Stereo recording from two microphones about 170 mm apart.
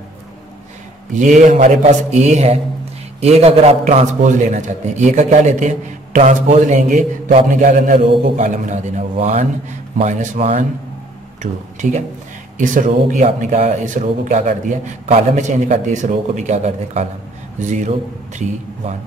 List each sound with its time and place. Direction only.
1.1 s a man's voice: 45° right (ahead or behind)
11.8 s a man's voice: 45° right (ahead or behind)